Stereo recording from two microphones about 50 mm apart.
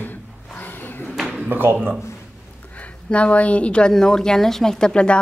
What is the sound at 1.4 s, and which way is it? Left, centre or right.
Speech, right.